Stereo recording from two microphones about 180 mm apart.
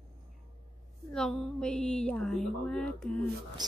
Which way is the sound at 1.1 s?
5° left (ahead or behind).